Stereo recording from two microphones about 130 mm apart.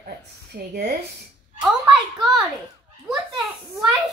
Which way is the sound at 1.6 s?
5° right (ahead or behind).